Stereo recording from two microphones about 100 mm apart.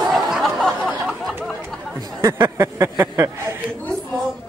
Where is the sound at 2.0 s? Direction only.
35° right (ahead or behind).